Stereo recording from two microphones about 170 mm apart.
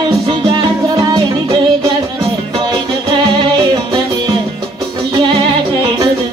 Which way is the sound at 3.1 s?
25° right (ahead or behind).